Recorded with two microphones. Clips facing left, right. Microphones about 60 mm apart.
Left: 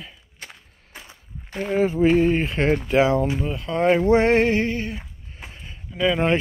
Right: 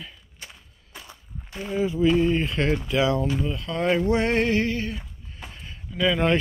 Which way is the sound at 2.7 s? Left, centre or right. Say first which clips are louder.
Left 5 dB; left.